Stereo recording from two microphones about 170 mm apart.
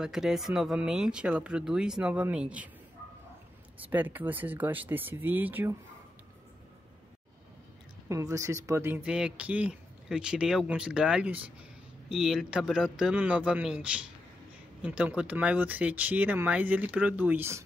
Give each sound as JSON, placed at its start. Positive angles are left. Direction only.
{"t": 0.0, "sound": "speech", "side_deg": -5}
{"t": 3.9, "sound": "speech", "side_deg": -10}
{"t": 8.1, "sound": "speech", "side_deg": -20}